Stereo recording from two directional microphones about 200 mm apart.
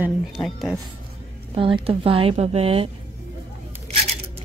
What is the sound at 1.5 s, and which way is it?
Speech, 25° right (ahead or behind).